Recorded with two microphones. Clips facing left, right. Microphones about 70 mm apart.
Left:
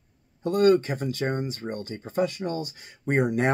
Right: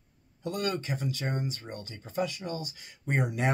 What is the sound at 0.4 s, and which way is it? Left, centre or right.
Speech, left.